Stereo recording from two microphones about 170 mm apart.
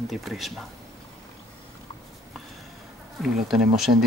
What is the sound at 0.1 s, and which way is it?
Speech, centre (ahead or behind).